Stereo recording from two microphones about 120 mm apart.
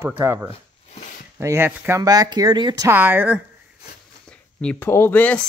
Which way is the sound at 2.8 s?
20° right (ahead or behind).